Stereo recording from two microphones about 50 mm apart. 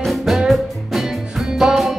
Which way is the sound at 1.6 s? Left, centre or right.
Centre.